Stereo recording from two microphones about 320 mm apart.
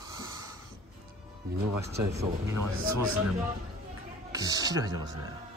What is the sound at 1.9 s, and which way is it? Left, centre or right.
Speech, right.